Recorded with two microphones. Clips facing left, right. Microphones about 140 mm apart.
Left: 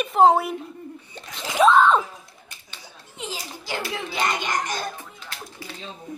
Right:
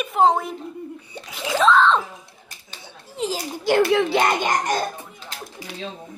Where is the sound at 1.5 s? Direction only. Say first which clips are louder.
Left 1 dB; 15° left (ahead or behind).